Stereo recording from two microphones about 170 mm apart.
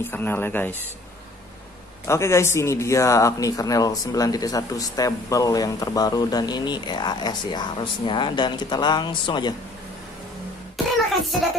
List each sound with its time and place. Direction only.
0.0 s speech: 10° left (ahead or behind)
2.0 s speech: 15° left (ahead or behind)